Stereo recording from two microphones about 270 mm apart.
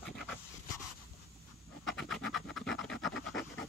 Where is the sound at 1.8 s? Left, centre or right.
Centre.